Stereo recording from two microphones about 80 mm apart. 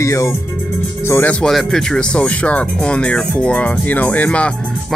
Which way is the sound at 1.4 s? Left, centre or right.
Centre.